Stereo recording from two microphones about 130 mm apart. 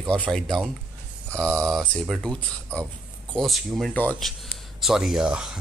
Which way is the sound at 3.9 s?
15° left (ahead or behind).